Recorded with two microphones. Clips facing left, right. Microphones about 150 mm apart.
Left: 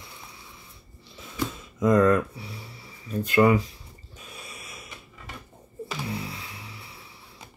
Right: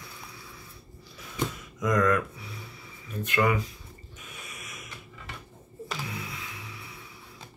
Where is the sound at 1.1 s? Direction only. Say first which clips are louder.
Left 1 dB; 25° left (ahead or behind).